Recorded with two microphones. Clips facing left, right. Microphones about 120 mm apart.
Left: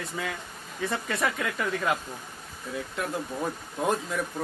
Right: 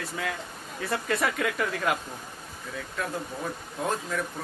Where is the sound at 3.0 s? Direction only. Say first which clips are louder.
Even; 15° left (ahead or behind).